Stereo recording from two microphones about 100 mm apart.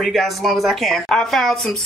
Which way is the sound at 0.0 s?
Centre (ahead or behind).